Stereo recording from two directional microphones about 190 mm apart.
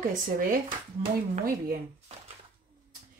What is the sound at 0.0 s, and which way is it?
Speech, 45° right (ahead or behind).